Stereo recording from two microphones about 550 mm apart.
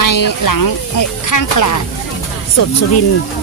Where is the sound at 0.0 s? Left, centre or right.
Left.